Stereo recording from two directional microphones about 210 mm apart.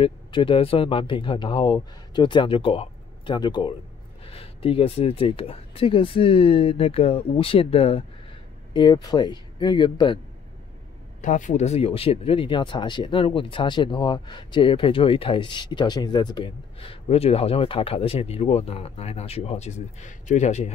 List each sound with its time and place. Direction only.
0.0 s speech: 25° left (ahead or behind)
11.1 s speech: 35° left (ahead or behind)